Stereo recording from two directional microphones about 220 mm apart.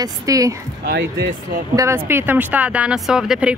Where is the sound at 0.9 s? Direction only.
45° right (ahead or behind).